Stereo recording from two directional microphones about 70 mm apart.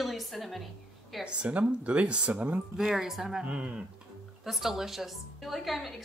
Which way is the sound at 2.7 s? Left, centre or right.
Centre.